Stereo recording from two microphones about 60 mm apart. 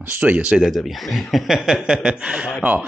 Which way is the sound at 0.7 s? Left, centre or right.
Centre.